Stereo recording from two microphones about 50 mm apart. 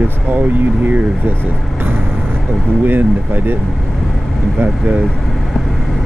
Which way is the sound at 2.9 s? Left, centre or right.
Right.